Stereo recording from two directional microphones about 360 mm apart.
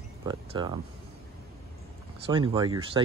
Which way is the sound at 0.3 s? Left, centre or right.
Centre.